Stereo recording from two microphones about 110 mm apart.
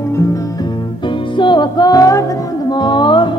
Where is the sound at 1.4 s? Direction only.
45° left (ahead or behind).